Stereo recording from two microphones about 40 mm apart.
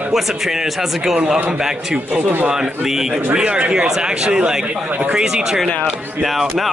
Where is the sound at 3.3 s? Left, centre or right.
Right; by 6.6 s centre.